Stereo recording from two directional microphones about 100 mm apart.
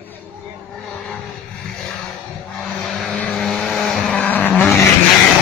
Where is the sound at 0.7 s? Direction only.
5° left (ahead or behind).